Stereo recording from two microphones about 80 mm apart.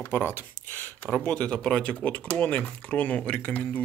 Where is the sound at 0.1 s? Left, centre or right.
Left.